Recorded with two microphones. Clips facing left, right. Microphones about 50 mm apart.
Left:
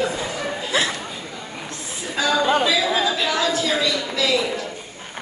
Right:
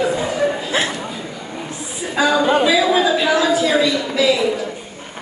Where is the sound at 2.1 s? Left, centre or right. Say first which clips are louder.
Right 4 dB; centre.